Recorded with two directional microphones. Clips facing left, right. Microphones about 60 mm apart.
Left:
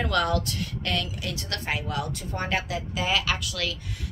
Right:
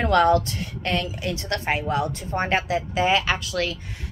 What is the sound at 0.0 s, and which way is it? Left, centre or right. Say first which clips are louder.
Speech: right 7 dB; right.